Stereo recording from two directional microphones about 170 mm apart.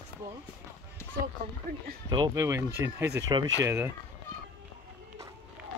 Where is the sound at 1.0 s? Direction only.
15° left (ahead or behind).